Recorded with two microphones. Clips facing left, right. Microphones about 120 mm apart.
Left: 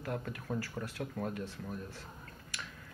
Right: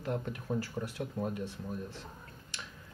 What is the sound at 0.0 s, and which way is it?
Speech, 20° right (ahead or behind).